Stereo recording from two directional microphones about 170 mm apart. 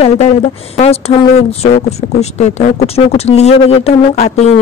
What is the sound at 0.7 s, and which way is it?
Speech, 40° left (ahead or behind).